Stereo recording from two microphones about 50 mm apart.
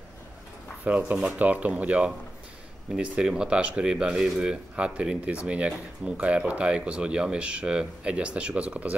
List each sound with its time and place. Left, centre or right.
0.8 s speech: right